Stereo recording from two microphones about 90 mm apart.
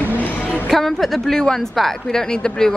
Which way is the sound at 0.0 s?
20° left (ahead or behind).